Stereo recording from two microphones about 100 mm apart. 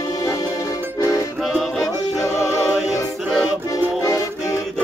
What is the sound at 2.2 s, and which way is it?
Music, 30° left (ahead or behind).